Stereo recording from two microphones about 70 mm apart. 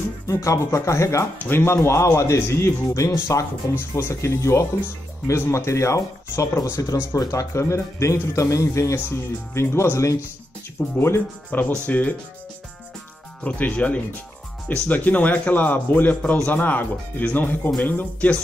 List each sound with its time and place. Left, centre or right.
0.3 s speech: left
11.5 s speech: left
13.4 s speech: left